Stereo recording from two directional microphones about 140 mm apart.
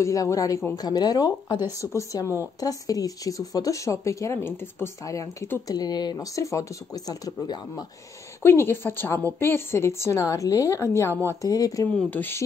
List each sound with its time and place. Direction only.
0.0 s a woman's voice: 25° left (ahead or behind)
2.2 s a woman's voice: 15° right (ahead or behind)
2.6 s a woman's voice: 25° left (ahead or behind)
8.4 s a woman's voice: 15° left (ahead or behind)
12.1 s a woman's voice: 15° left (ahead or behind)